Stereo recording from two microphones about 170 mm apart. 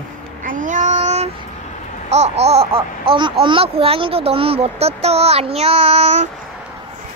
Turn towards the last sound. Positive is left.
turn(degrees=-40)  # may be behind; listen again after turning